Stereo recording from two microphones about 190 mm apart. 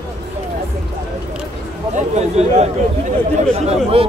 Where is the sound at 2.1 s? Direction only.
35° right (ahead or behind).